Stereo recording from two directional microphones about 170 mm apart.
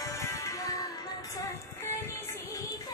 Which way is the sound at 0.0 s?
15° left (ahead or behind).